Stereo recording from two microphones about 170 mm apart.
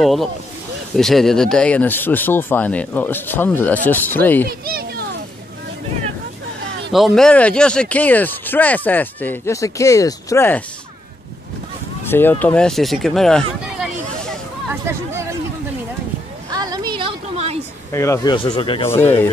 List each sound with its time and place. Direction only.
0.0 s speech: centre (ahead or behind)
4.5 s a sound: 60° right (ahead or behind)
6.9 s speech: centre (ahead or behind)
12.1 s speech: 10° left (ahead or behind)
14.7 s hubbub: 15° right (ahead or behind)
16.5 s a sound: 25° right (ahead or behind)
17.9 s speech: 15° left (ahead or behind)
18.9 s speech: 15° left (ahead or behind)